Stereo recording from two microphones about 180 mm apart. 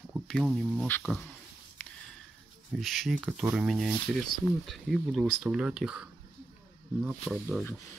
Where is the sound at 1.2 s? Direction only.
10° left (ahead or behind).